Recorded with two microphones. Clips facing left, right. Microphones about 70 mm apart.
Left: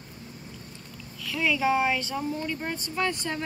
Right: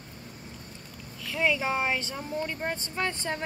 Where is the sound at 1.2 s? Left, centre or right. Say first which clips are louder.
Left 2 dB; right.